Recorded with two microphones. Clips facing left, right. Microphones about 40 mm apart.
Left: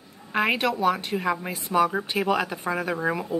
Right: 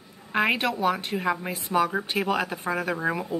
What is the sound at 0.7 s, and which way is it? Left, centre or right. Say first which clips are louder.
Speech: left 2 dB; centre.